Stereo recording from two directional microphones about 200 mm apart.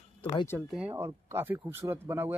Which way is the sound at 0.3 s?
20° left (ahead or behind).